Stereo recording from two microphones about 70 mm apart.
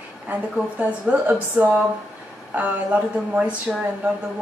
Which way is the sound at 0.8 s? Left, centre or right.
Right.